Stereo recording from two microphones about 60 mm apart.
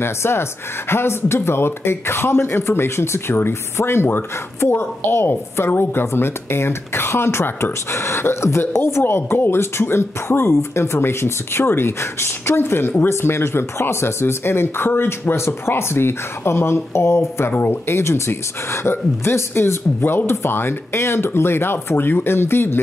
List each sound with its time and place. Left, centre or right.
0.0 s speech: left
17.5 s speech: left
17.8 s speech: left